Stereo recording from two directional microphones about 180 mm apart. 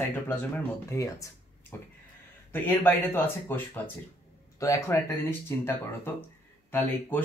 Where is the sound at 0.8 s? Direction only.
15° left (ahead or behind).